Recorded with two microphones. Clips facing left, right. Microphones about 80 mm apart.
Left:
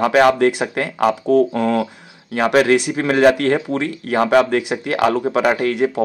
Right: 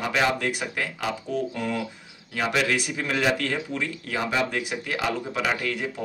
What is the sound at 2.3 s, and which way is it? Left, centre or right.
Speech, left.